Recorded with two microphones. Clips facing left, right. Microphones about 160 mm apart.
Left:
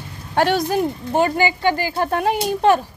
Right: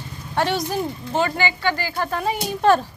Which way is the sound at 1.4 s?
15° left (ahead or behind).